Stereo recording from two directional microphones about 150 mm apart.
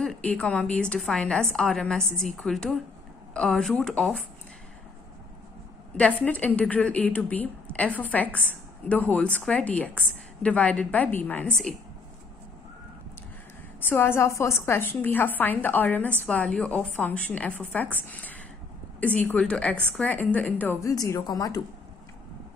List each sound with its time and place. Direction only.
0.0 s a woman's voice: 5° left (ahead or behind)
5.9 s a woman's voice: 10° left (ahead or behind)
13.7 s a woman's voice: 15° left (ahead or behind)
20.9 s speech: 25° left (ahead or behind)